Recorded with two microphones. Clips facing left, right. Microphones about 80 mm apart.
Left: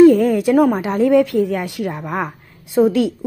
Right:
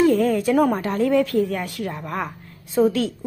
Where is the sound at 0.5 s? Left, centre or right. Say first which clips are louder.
Left 4 dB; centre.